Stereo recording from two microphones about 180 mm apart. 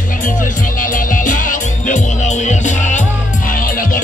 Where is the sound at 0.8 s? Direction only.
50° left (ahead or behind).